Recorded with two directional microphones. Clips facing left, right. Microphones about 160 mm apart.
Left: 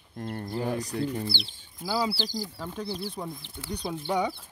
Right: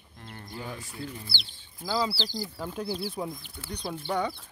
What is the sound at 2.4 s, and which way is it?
Speech, 5° right (ahead or behind).